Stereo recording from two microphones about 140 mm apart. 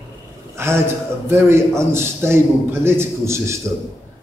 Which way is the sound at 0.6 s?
20° right (ahead or behind).